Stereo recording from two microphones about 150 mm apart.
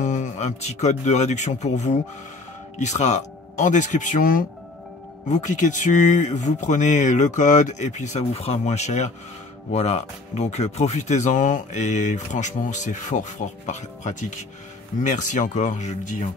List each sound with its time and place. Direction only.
0.0 s speech: 50° left (ahead or behind)